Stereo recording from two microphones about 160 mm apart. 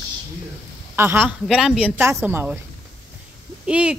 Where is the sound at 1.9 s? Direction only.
15° right (ahead or behind).